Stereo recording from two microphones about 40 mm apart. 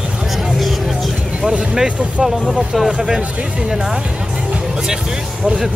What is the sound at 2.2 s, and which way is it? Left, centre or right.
Speech, centre.